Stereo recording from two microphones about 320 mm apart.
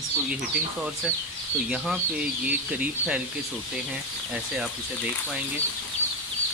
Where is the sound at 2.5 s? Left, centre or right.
Centre.